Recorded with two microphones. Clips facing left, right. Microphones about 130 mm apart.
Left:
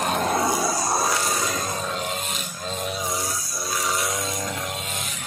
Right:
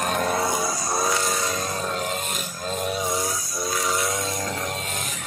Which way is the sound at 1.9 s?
Centre (ahead or behind).